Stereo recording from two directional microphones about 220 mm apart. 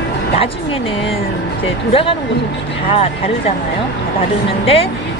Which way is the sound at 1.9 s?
25° left (ahead or behind).